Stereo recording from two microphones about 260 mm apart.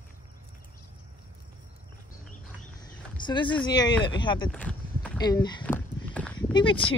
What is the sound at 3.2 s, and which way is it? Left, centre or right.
Speech, centre.